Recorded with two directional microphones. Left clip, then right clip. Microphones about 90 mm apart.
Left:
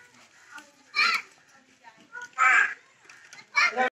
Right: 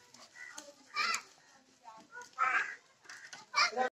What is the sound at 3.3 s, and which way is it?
Chicken, 40° left (ahead or behind).